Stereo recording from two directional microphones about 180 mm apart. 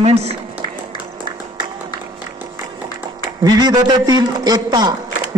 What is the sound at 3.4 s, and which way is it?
A man's voice, 20° right (ahead or behind).